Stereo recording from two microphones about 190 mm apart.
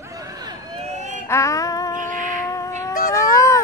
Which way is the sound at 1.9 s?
45° right (ahead or behind).